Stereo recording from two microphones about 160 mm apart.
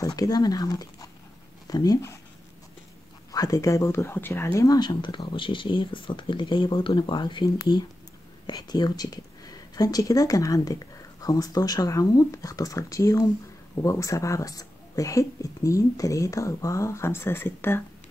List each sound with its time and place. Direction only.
0.0 s speech: 25° left (ahead or behind)
3.3 s speech: 20° left (ahead or behind)